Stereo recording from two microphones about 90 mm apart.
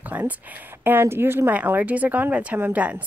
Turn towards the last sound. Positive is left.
turn(degrees=-15)  # may be behind; listen again after turning